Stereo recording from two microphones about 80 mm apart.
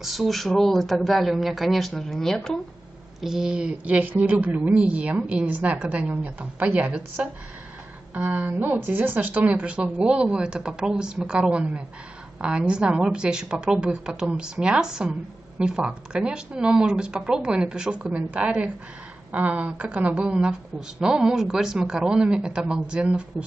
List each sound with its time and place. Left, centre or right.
0.0 s speech: centre
3.2 s a woman's voice: centre